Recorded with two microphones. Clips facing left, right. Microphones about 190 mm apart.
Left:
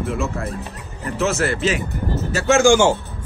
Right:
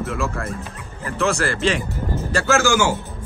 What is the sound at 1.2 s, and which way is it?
Speech, centre (ahead or behind).